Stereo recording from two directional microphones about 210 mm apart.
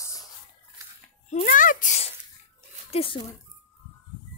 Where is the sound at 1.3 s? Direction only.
40° left (ahead or behind).